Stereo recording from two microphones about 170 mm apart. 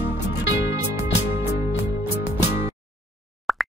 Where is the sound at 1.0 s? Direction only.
90° left.